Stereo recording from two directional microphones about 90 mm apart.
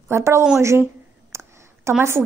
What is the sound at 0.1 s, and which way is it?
Speech, 30° right (ahead or behind).